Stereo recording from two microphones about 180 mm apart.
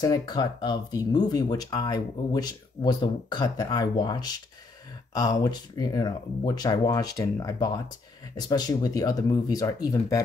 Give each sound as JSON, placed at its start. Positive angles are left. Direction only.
{"t": 0.0, "sound": "speech", "side_deg": 20}